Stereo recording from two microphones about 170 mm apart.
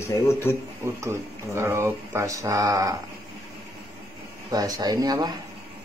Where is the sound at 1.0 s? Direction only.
15° right (ahead or behind).